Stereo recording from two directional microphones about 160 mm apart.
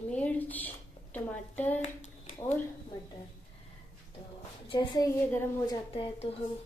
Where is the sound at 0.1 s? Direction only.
10° left (ahead or behind).